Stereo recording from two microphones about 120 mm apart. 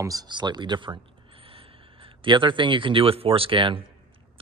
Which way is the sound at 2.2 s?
45° right (ahead or behind).